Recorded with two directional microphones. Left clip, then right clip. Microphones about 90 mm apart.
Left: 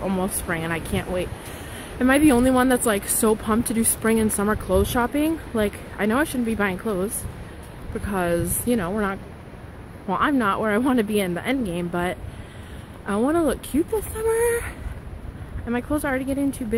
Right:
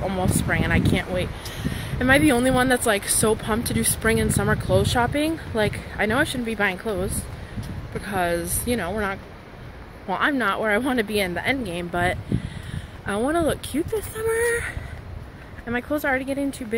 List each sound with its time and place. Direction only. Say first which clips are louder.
0.0 s speech: right 1 dB; 35° left (ahead or behind)
6.8 s speech: left 1 dB; 30° left (ahead or behind)
8.1 s a woman's voice: even; 45° left (ahead or behind)
10.0 s speech: left 1 dB; 40° left (ahead or behind)
15.7 s speech: right 1 dB; 35° left (ahead or behind)